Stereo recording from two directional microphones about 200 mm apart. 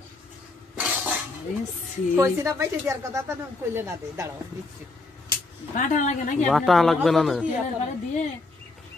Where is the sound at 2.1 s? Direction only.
15° right (ahead or behind).